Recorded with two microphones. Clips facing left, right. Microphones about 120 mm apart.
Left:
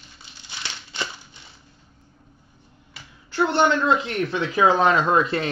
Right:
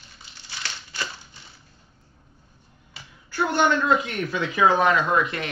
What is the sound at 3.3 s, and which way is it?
Speech, 25° left (ahead or behind).